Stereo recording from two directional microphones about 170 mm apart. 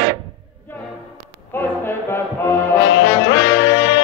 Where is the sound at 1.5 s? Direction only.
15° left (ahead or behind).